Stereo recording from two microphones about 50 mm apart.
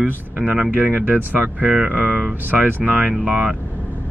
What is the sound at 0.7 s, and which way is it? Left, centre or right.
Speech, right.